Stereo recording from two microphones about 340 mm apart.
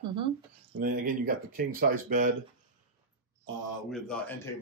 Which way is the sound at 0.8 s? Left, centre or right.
Right.